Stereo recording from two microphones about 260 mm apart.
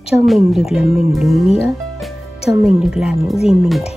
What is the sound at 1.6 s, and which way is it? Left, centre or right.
Music, centre.